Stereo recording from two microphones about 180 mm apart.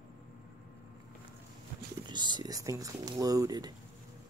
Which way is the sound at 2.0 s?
25° right (ahead or behind).